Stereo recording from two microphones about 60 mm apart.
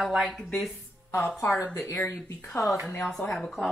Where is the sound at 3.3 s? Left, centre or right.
Centre.